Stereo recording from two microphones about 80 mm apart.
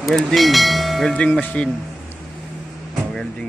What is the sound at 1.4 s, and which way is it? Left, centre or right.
Speech, centre.